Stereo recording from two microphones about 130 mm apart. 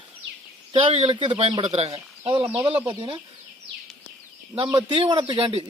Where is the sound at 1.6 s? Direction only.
50° right (ahead or behind).